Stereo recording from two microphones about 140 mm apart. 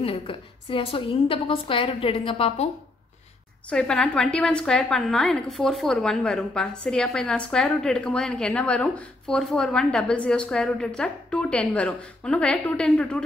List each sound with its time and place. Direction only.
0.0 s a woman's voice: 40° left (ahead or behind)
3.7 s a woman's voice: 5° left (ahead or behind)